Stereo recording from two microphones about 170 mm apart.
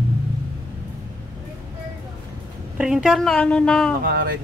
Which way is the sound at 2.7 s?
5° right (ahead or behind).